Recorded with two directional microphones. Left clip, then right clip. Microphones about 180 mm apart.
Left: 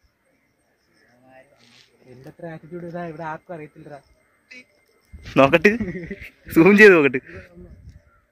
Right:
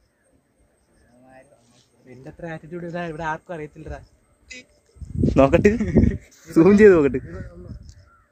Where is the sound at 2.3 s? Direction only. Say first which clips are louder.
Right 2 dB; centre (ahead or behind).